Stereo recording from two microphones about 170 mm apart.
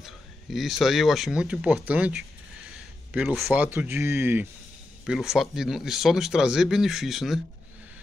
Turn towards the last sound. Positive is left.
turn(degrees=0)  # may be behind; listen again after turning